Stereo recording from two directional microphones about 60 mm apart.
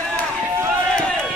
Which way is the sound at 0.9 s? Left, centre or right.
Centre.